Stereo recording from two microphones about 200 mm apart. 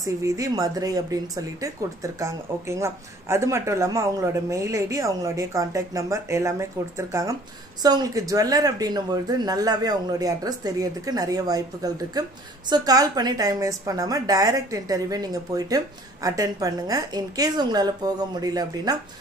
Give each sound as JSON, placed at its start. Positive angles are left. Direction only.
{"t": 0.0, "sound": "speech", "side_deg": -15}